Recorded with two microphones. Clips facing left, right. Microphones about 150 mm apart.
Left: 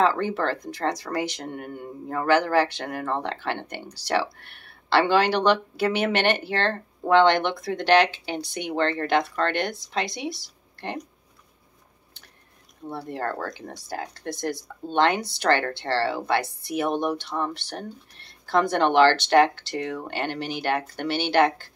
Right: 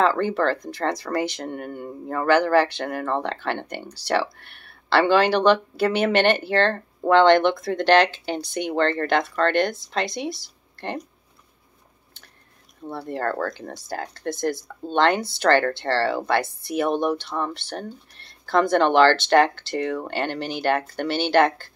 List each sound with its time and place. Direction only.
0.3 s speech: 15° left (ahead or behind)
12.9 s speech: 15° left (ahead or behind)